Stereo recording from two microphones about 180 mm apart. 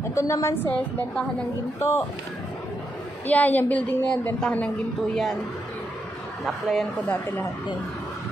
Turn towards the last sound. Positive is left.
turn(degrees=0)  # may be behind; listen again after turning